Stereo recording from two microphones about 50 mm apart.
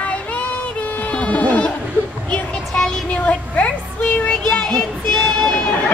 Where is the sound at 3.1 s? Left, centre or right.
Left.